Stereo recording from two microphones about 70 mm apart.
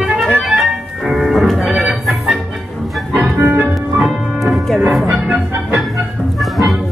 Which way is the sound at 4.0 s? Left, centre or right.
Centre.